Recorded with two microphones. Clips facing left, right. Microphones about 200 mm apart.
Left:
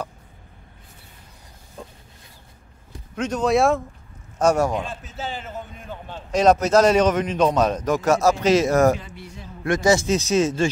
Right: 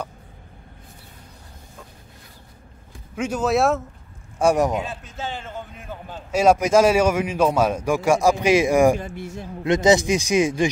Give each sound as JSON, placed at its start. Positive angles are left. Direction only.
{"t": 3.2, "sound": "speech", "side_deg": -5}
{"t": 4.4, "sound": "a man's voice", "side_deg": -15}
{"t": 4.7, "sound": "a sound", "side_deg": 5}
{"t": 5.8, "sound": "a man's voice", "side_deg": -5}
{"t": 9.0, "sound": "speech", "side_deg": -50}
{"t": 9.7, "sound": "a man's voice", "side_deg": -20}